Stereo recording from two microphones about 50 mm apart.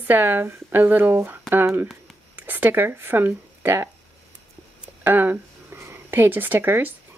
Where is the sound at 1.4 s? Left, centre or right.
Right.